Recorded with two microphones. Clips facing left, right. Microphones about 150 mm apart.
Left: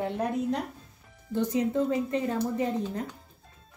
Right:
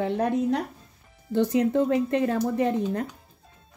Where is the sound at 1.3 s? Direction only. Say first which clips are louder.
Right 5 dB; 75° right (ahead or behind).